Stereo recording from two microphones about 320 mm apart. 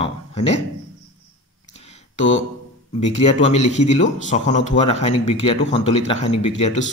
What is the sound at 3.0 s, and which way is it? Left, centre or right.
Speech, left.